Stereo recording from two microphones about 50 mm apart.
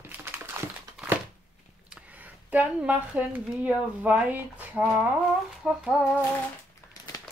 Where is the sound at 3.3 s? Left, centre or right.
Right.